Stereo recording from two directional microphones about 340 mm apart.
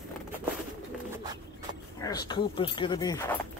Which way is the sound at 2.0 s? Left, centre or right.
Centre.